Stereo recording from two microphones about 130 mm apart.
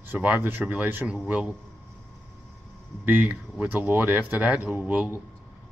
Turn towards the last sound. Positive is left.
turn(degrees=-10)  # may be behind; listen again after turning